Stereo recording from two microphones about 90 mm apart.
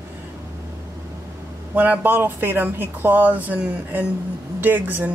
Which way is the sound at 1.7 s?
20° right (ahead or behind).